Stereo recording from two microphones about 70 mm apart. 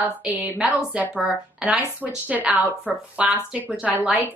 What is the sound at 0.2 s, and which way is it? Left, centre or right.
Speech, centre.